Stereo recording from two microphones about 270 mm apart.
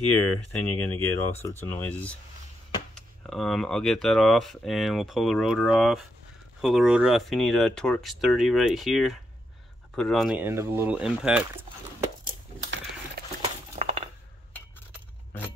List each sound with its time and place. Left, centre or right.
0.5 s speech: centre
3.3 s speech: centre
13.4 s a sound: right